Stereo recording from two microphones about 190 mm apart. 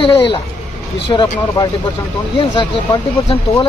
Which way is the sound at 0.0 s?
30° left (ahead or behind).